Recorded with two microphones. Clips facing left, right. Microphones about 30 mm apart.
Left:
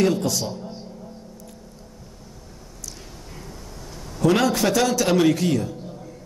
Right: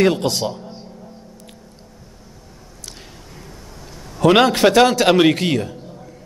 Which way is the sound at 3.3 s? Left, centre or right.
Centre.